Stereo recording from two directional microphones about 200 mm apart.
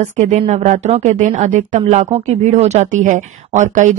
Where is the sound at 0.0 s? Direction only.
35° right (ahead or behind).